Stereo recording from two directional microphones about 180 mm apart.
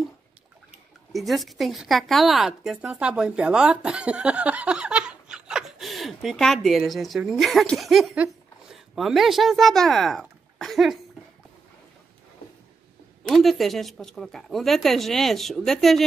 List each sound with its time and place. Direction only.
1.1 s a woman's voice: centre (ahead or behind)
13.3 s a woman's voice: centre (ahead or behind)